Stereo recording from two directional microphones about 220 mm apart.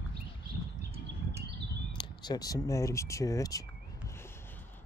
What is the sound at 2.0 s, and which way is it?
Speech, 20° left (ahead or behind).